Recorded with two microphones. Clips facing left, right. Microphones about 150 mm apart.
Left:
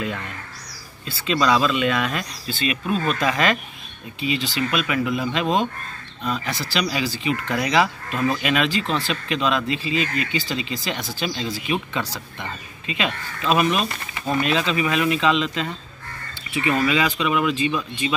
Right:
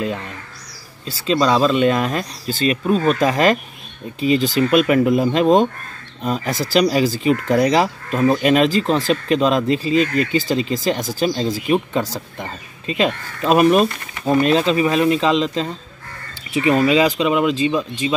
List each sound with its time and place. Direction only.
0.0 s speech: 30° right (ahead or behind)